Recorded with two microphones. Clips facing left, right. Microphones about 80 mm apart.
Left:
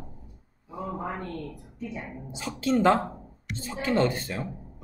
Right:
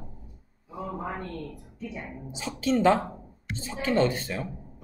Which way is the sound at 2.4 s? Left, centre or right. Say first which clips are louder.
Even; left.